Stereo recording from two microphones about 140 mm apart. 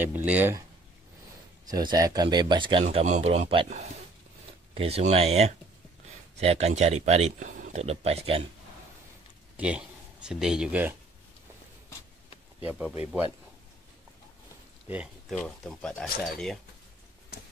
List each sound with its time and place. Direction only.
0.0 s speech: 10° right (ahead or behind)
1.7 s speech: 30° right (ahead or behind)
2.8 s speech: 50° right (ahead or behind); by 7.8 s 70° right (ahead or behind)
7.8 s speech: 50° right (ahead or behind)
9.6 s speech: 10° right (ahead or behind)
12.6 s speech: 10° right (ahead or behind)
15.2 s speech: 5° left (ahead or behind)